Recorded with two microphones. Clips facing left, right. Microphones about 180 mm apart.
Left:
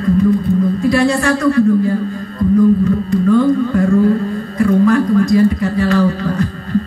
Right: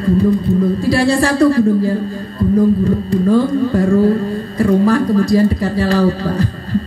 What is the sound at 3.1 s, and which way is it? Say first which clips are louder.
A man's voice: left 2 dB; 35° right (ahead or behind).